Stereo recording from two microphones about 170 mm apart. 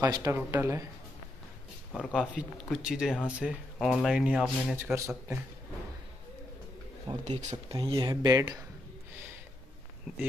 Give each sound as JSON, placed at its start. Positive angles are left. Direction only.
{"t": 0.0, "sound": "speech", "side_deg": -20}
{"t": 1.9, "sound": "speech", "side_deg": 10}
{"t": 2.1, "sound": "speech", "side_deg": -5}
{"t": 4.9, "sound": "speech", "side_deg": -15}
{"t": 7.1, "sound": "speech", "side_deg": -25}